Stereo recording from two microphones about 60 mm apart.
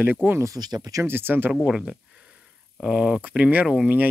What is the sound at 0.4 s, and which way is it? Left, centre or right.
Speech, right.